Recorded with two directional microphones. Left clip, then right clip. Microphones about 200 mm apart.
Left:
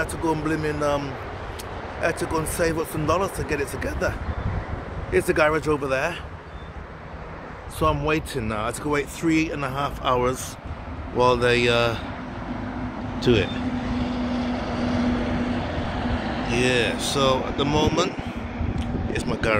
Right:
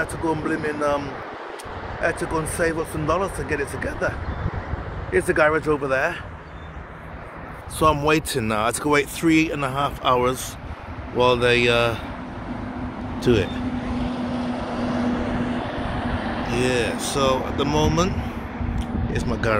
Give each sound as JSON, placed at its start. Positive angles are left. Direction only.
{"t": 0.0, "sound": "speech", "side_deg": 0}
{"t": 5.1, "sound": "speech", "side_deg": -5}
{"t": 7.8, "sound": "speech", "side_deg": -55}
{"t": 9.5, "sound": "speech", "side_deg": -30}
{"t": 11.1, "sound": "speech", "side_deg": -5}
{"t": 13.2, "sound": "vehicle", "side_deg": -10}
{"t": 16.5, "sound": "speech", "side_deg": -5}